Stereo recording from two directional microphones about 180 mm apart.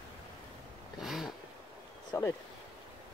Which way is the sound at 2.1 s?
15° left (ahead or behind).